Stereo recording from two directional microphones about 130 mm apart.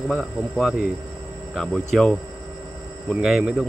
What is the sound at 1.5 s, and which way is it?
Speech, 5° left (ahead or behind).